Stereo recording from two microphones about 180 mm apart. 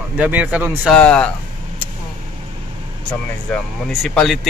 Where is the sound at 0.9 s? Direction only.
5° left (ahead or behind).